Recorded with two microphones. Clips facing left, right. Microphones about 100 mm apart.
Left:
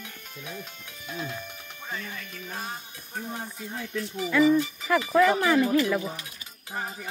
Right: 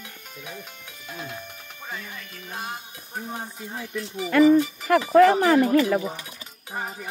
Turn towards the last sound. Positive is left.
turn(degrees=-15)  # may be behind; listen again after turning